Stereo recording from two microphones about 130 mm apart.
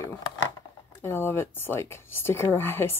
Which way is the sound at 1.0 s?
20° left (ahead or behind).